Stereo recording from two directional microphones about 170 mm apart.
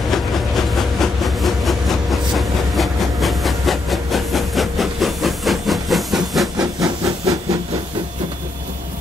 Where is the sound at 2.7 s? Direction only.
Centre (ahead or behind).